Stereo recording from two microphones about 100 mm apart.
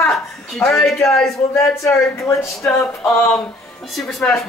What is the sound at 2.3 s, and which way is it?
Speech, 30° left (ahead or behind).